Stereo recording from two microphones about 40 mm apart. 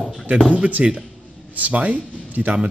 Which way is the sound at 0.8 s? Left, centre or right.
Right.